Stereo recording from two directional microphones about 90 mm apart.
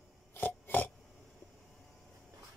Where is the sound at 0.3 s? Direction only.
20° left (ahead or behind).